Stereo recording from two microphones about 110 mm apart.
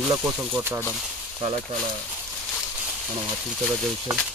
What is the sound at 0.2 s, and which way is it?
Speech, 15° right (ahead or behind).